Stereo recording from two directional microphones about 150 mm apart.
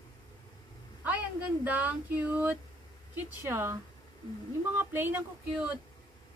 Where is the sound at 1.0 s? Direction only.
10° right (ahead or behind).